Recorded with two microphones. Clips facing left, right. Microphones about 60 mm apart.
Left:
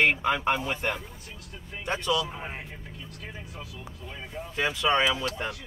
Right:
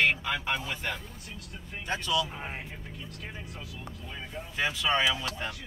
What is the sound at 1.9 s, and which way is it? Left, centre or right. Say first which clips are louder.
Speech: left 2 dB; left.